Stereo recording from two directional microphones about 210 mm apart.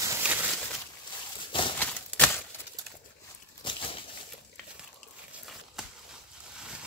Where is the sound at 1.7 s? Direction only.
5° left (ahead or behind).